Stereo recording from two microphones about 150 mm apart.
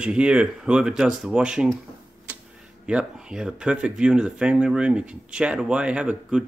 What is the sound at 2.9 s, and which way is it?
Speech, 5° right (ahead or behind).